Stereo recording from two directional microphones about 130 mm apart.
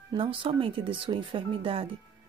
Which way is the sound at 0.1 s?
45° right (ahead or behind).